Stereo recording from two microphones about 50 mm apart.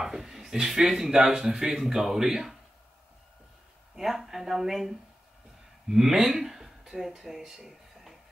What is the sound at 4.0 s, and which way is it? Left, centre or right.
Speech, centre.